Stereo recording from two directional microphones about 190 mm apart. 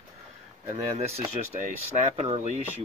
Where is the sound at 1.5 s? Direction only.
40° right (ahead or behind).